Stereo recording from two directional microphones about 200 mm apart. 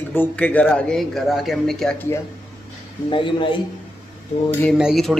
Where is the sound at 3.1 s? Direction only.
25° left (ahead or behind).